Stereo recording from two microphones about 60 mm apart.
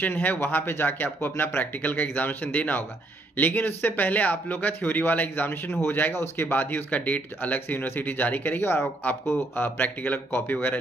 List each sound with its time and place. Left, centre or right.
0.1 s speech: left